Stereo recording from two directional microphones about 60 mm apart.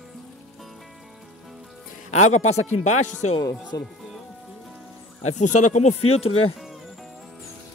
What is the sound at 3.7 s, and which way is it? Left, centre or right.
Speech, left.